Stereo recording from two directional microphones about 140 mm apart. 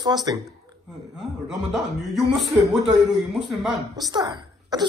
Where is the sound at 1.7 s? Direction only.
Centre (ahead or behind).